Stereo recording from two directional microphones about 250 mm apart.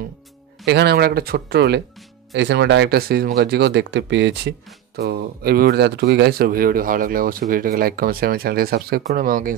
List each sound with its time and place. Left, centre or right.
0.7 s speech: right